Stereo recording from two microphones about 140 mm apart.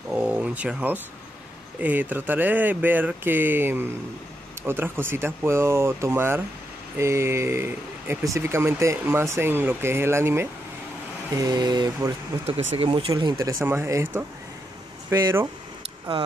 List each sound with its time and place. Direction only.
0.1 s a sound: 10° right (ahead or behind)
1.8 s speech: 10° right (ahead or behind)
11.3 s mantra: 30° right (ahead or behind)
12.4 s speech: 45° right (ahead or behind)
13.1 s mantra: 25° right (ahead or behind)
13.7 s speech: 20° right (ahead or behind)
15.0 s mantra: 20° right (ahead or behind)